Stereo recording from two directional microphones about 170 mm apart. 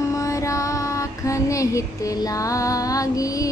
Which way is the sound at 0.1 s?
20° left (ahead or behind).